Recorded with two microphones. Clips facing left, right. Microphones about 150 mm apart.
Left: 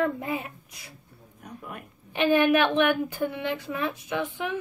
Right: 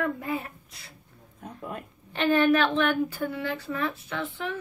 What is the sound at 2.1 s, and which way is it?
A woman's voice, 15° left (ahead or behind).